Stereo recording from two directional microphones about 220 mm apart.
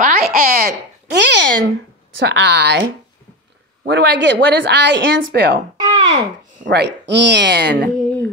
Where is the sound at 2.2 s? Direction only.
50° right (ahead or behind).